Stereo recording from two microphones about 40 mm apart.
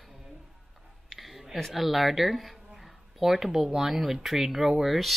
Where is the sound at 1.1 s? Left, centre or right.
Centre.